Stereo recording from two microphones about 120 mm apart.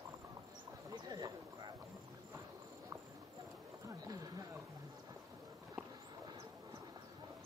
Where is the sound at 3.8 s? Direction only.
30° right (ahead or behind).